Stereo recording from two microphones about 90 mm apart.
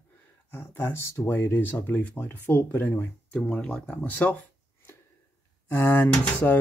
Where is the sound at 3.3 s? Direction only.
10° left (ahead or behind).